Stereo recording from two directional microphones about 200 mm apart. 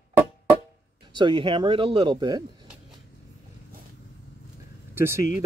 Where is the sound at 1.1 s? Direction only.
25° right (ahead or behind).